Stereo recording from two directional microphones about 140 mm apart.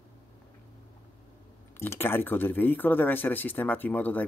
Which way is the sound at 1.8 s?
15° left (ahead or behind).